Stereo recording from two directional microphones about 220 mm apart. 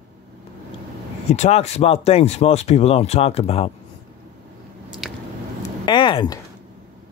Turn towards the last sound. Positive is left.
turn(degrees=20)  # may be behind; listen again after turning